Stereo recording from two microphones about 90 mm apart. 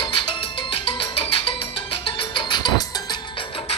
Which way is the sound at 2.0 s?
70° left (ahead or behind).